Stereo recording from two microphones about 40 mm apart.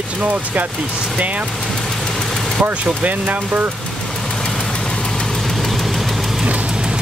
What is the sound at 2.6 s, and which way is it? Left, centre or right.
Speech, right.